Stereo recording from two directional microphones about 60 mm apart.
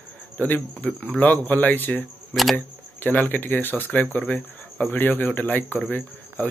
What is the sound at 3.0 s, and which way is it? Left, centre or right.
A man's voice, left.